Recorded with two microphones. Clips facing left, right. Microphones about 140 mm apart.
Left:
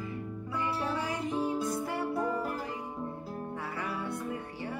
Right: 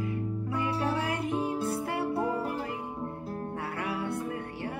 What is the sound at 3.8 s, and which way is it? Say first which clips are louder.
Music: right 4 dB; 65° right (ahead or behind).